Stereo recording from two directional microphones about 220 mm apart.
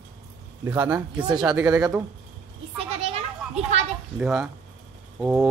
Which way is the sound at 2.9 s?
25° right (ahead or behind).